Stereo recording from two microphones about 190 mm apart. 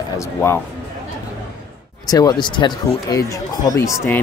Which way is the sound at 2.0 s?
20° left (ahead or behind).